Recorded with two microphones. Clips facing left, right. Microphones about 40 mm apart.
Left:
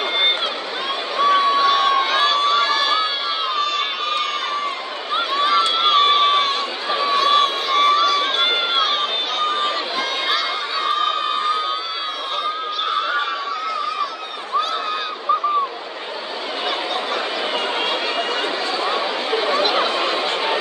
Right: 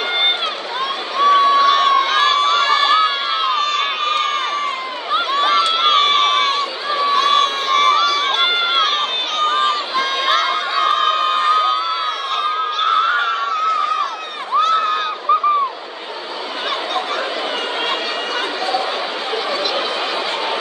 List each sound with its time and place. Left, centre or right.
1.2 s crowd: right
7.1 s run: right
8.5 s crowd: right
12.8 s a sound: right
18.7 s chatter: left
19.7 s a sound: left